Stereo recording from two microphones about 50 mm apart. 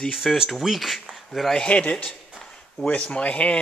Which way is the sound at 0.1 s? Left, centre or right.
Centre.